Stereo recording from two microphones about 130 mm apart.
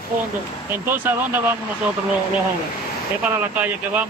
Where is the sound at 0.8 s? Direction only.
15° right (ahead or behind).